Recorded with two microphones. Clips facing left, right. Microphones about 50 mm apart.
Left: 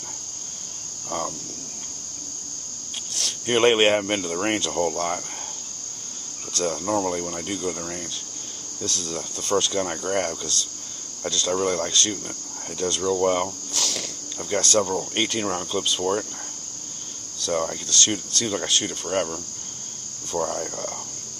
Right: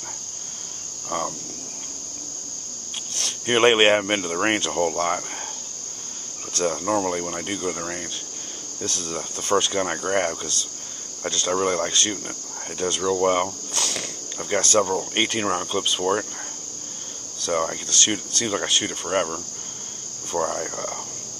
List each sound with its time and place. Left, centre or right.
1.1 s cricket: right
3.2 s speech: centre
6.6 s speech: right
17.4 s speech: right